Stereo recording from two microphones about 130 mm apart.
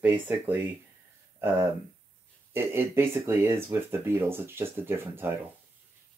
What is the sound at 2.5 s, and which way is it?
Speech, 20° right (ahead or behind).